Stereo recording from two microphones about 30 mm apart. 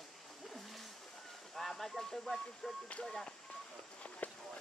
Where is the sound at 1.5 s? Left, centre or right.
Centre.